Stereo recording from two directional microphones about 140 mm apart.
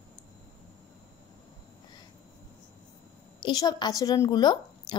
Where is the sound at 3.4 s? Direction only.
30° left (ahead or behind).